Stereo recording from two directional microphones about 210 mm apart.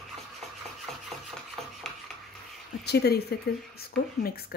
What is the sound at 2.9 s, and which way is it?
Speech, 50° left (ahead or behind).